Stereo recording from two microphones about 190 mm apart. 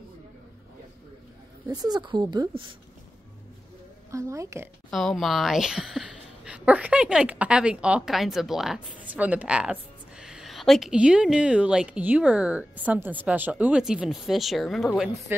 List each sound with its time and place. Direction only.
1.7 s speech: 20° right (ahead or behind)
4.1 s a woman's voice: 15° right (ahead or behind)
4.9 s a woman's voice: centre (ahead or behind)